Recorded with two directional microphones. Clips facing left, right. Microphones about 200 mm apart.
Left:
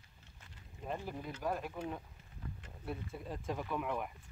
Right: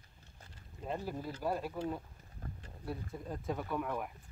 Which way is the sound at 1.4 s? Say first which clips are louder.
Right 2 dB; 10° right (ahead or behind).